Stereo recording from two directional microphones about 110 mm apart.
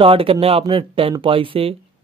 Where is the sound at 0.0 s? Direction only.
55° right (ahead or behind).